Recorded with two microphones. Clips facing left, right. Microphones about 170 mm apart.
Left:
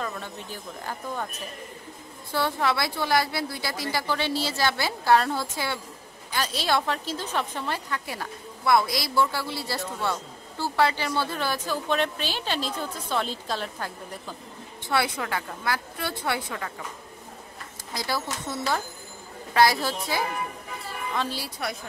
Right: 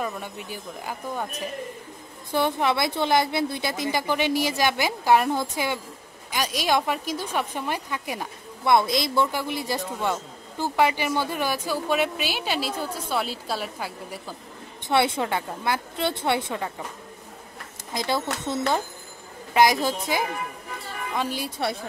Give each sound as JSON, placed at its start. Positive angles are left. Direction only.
{"t": 0.0, "sound": "a woman's voice", "side_deg": -10}
{"t": 14.9, "sound": "a woman's voice", "side_deg": -25}
{"t": 17.9, "sound": "a woman's voice", "side_deg": -20}